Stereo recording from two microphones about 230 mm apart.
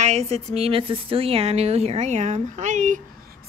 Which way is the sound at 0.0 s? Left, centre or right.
Right.